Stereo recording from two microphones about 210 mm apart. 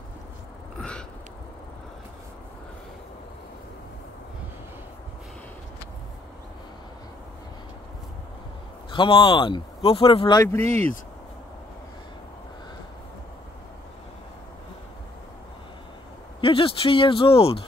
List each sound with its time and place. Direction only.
0.7 s a sound: 5° left (ahead or behind)
8.9 s speech: 25° left (ahead or behind)
10.7 s speech: 30° right (ahead or behind)
16.3 s speech: 25° left (ahead or behind)